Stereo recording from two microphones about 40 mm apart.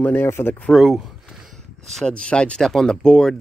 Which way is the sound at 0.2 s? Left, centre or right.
Left.